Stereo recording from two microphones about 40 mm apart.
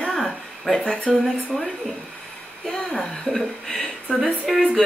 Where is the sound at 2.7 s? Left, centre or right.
Centre.